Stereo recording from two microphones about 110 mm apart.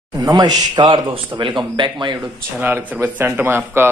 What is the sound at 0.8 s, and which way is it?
Speech, 45° right (ahead or behind).